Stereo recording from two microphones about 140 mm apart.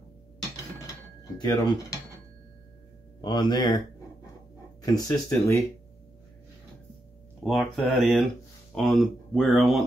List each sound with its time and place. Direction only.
1.4 s speech: 30° left (ahead or behind)
3.2 s speech: 30° left (ahead or behind)
4.9 s speech: 25° left (ahead or behind)
7.4 s speech: centre (ahead or behind)